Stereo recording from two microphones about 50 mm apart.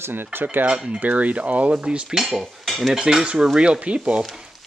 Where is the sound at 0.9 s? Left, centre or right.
Right.